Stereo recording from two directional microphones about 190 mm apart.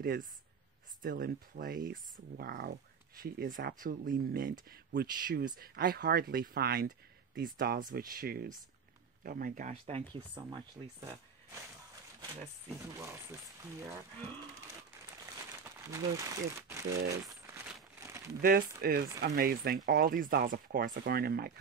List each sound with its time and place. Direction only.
0.0 s speech: 50° right (ahead or behind); by 11.1 s 25° right (ahead or behind)
13.0 s speech: 15° right (ahead or behind)
15.6 s speech: 15° right (ahead or behind)
17.1 s crumpling: 15° right (ahead or behind)
18.8 s speech: 50° right (ahead or behind)